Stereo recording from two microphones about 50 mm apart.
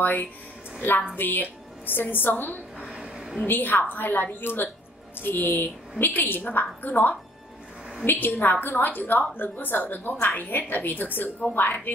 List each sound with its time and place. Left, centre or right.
0.0 s a woman's voice: left
2.8 s a sound: centre
3.4 s a woman's voice: left